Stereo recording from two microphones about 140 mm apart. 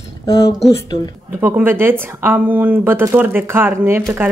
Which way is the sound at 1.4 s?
15° right (ahead or behind).